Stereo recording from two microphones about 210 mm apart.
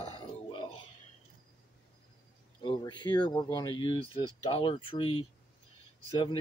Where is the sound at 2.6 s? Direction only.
20° left (ahead or behind).